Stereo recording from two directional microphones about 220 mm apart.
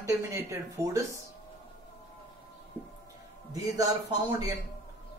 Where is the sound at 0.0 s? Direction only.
15° right (ahead or behind).